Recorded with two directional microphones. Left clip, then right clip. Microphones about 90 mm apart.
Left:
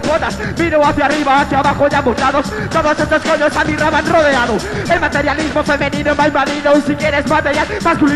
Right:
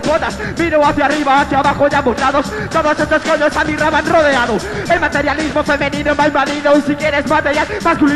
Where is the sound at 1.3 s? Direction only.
35° right (ahead or behind).